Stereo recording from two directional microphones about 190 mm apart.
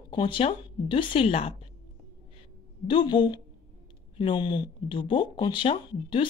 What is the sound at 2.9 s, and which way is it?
Speech, 25° left (ahead or behind).